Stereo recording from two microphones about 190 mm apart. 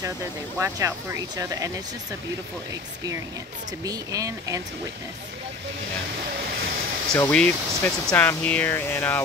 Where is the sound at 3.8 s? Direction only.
20° right (ahead or behind).